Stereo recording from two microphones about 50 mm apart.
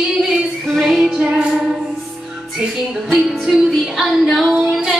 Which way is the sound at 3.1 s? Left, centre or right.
Centre.